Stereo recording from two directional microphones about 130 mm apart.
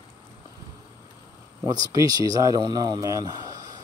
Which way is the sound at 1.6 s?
30° right (ahead or behind).